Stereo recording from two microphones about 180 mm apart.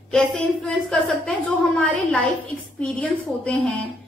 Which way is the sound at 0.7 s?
5° left (ahead or behind).